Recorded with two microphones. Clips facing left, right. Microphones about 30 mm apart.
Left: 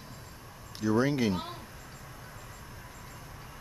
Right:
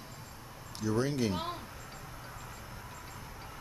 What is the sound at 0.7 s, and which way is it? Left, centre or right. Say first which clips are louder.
Speech: left 4 dB; centre.